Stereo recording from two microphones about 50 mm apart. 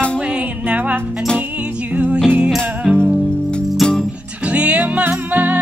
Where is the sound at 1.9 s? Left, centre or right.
Right.